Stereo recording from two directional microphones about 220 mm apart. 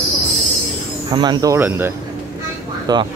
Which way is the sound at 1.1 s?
20° right (ahead or behind).